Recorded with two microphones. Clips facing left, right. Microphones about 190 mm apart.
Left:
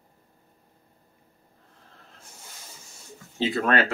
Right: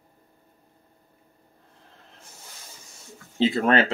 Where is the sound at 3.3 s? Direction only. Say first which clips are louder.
Right 3 dB; 25° right (ahead or behind).